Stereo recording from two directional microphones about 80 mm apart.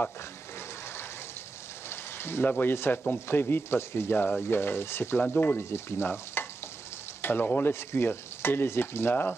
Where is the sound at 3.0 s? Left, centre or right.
Left.